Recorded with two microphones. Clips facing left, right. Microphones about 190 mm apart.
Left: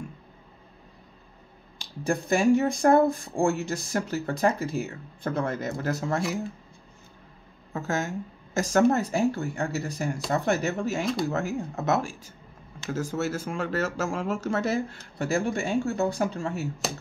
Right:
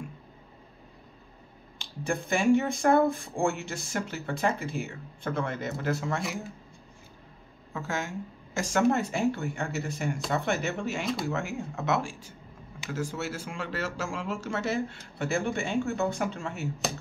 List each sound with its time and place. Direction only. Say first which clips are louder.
1.8 s speech: left 3 dB; 35° left (ahead or behind)
7.7 s speech: left 4 dB; 40° left (ahead or behind)
16.8 s speech: right 3 dB; centre (ahead or behind)